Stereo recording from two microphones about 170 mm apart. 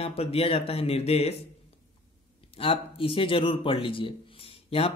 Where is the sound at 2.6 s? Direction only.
30° left (ahead or behind).